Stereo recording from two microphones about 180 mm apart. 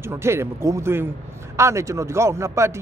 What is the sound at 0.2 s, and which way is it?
Speech, 15° right (ahead or behind).